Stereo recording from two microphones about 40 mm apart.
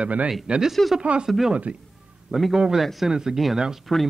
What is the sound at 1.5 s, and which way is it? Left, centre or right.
Speech, right.